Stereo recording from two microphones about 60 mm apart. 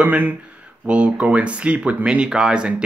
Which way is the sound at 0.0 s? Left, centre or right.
Right.